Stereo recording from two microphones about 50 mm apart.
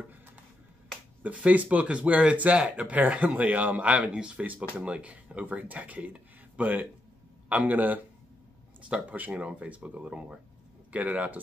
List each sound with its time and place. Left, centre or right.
1.2 s speech: right